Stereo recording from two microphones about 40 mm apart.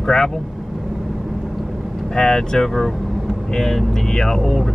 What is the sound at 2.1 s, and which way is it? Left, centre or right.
Speech, centre.